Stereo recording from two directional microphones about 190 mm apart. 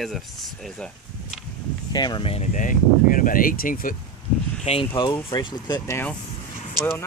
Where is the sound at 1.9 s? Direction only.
20° left (ahead or behind); by 3.9 s 50° left (ahead or behind).